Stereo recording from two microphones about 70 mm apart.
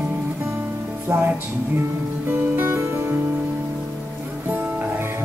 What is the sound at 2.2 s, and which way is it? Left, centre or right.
Music, right.